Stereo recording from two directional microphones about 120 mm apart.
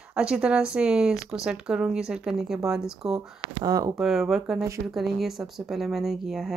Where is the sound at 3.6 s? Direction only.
30° right (ahead or behind).